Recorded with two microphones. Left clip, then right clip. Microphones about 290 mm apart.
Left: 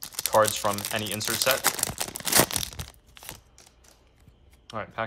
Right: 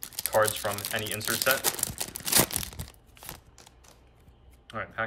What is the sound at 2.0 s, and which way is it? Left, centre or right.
Tearing, centre.